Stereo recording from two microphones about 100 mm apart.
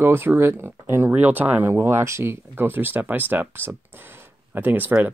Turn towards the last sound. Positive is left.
turn(degrees=-20)  # may be behind; listen again after turning